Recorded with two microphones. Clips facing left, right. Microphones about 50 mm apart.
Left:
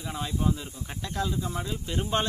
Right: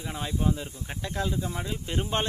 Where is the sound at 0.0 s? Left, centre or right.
Centre.